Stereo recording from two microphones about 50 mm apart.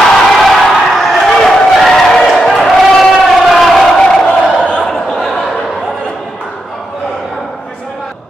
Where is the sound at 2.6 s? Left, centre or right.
Centre.